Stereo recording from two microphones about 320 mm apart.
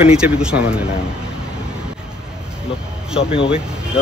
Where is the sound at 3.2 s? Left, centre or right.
Centre.